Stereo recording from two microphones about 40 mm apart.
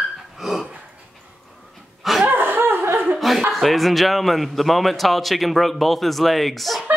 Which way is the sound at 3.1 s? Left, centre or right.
Centre.